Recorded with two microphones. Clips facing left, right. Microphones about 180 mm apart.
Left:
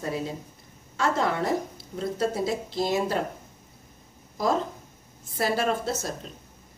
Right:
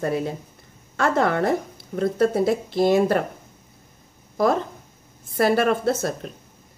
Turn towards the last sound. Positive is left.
turn(degrees=-60)  # may be behind; listen again after turning